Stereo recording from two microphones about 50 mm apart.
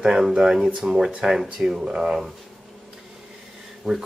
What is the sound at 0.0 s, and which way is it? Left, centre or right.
Speech, centre.